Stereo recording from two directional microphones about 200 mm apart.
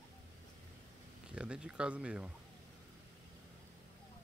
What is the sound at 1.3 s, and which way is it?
Speech, 5° right (ahead or behind).